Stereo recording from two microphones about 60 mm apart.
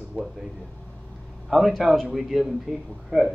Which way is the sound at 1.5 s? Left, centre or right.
Centre.